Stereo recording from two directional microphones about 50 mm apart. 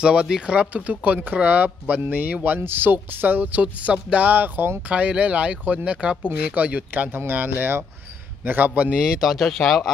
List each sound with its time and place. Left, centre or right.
0.0 s speech: centre
2.6 s speech: right
3.8 s speech: right
6.2 s speech: right
7.1 s speech: right
8.9 s speech: centre